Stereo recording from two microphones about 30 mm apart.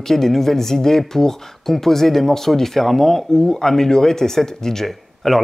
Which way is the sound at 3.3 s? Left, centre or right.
Centre.